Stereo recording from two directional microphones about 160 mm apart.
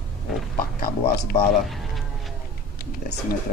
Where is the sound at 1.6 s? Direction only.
Centre (ahead or behind).